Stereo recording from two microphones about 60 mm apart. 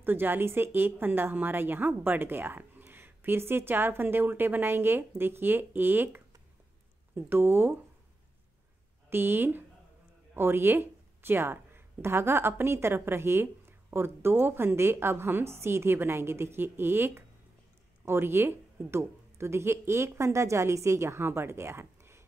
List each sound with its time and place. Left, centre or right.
0.0 s speech: right
9.1 s speech: right